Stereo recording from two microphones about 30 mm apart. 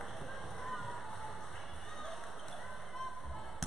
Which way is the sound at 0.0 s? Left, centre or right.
Centre.